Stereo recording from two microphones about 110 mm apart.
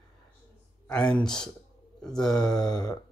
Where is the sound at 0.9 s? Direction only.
10° left (ahead or behind).